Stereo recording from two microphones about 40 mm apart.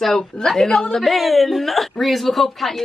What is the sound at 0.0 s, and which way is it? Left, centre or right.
Speech, centre.